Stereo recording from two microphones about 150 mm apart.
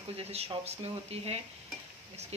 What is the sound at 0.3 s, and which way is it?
Speech, 45° right (ahead or behind).